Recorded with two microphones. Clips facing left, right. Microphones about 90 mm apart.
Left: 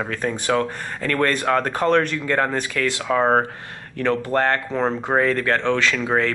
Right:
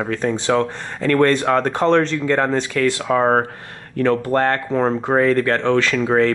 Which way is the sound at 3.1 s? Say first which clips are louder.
Right 1 dB; 50° right (ahead or behind).